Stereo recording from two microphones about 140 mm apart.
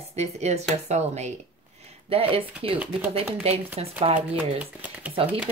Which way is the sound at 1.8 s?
45° right (ahead or behind).